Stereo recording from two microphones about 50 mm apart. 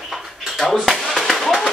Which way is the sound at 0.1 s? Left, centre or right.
Centre.